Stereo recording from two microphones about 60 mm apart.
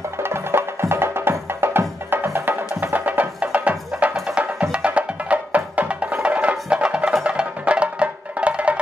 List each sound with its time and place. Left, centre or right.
0.2 s music: right